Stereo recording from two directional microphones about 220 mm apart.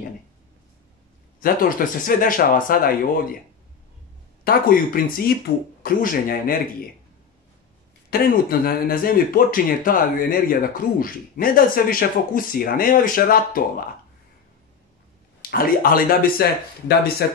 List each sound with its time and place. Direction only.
1.4 s speech: 40° left (ahead or behind)
4.5 s speech: 40° left (ahead or behind)
8.1 s speech: 45° left (ahead or behind)
15.5 s speech: 40° left (ahead or behind)